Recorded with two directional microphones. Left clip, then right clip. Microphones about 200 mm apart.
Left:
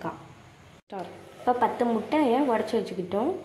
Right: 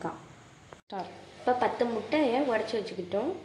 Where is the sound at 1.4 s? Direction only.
60° left (ahead or behind).